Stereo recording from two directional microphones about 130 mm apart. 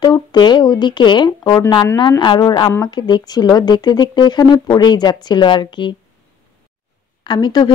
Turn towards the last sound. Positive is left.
turn(degrees=35)  # may be behind; listen again after turning